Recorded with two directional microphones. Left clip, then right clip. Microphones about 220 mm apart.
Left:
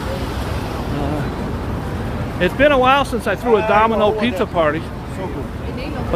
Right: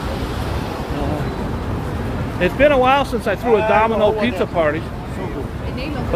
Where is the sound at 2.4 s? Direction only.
10° left (ahead or behind).